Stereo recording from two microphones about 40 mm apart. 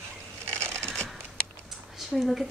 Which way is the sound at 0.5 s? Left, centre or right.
Left.